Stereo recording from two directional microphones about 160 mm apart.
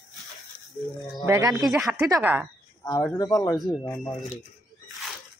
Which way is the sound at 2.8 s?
20° left (ahead or behind).